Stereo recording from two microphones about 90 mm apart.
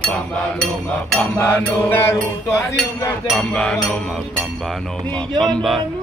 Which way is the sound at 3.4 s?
10° left (ahead or behind).